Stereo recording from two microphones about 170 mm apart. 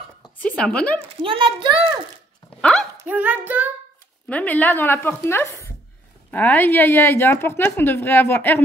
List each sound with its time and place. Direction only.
0.4 s a woman's voice: 5° left (ahead or behind)
1.2 s a child's voice: 30° right (ahead or behind)
2.6 s dog: centre (ahead or behind)
3.0 s speech: 10° right (ahead or behind)
4.3 s a woman's voice: 10° left (ahead or behind)